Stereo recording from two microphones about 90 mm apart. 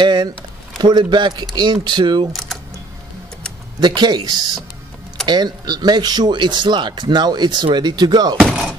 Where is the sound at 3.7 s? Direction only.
55° right (ahead or behind).